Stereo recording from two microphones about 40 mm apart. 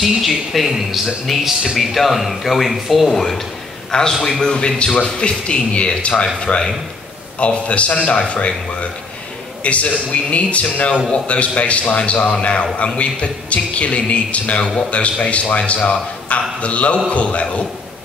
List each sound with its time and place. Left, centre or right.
0.0 s speech: centre
3.9 s a man's voice: left
9.6 s a man's voice: left